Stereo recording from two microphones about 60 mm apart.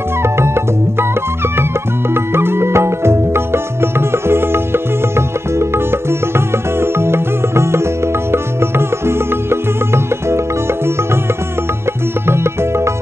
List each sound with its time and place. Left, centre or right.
0.2 s music: right
12.3 s music: right